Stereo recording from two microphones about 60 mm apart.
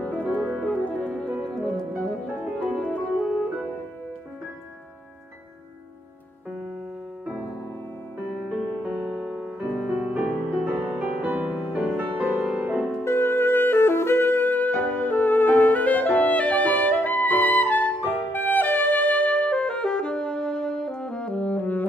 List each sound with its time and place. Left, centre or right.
0.0 s music: left
0.4 s music: right
0.7 s music: left
8.5 s music: centre; by 12.4 s right
13.0 s music: left
19.2 s music: centre